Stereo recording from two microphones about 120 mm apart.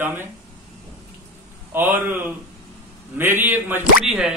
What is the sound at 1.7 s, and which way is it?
A man's voice, 15° right (ahead or behind).